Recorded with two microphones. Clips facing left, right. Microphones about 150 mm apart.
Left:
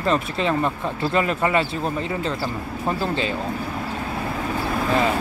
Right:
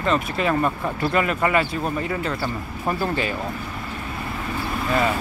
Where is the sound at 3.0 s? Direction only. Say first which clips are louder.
Right 1 dB; 20° left (ahead or behind).